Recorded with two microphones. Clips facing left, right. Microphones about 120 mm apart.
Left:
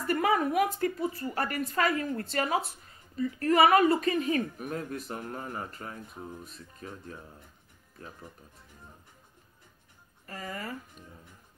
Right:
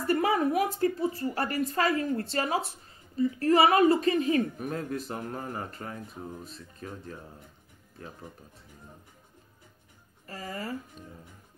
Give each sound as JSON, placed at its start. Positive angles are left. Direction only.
{"t": 0.0, "sound": "a woman's voice", "side_deg": -30}
{"t": 10.2, "sound": "a woman's voice", "side_deg": -30}